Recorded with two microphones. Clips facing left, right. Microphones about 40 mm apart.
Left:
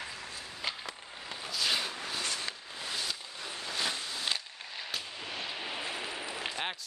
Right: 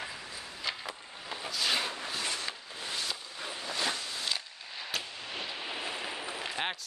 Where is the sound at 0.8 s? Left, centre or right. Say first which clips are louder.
Right 2 dB; centre.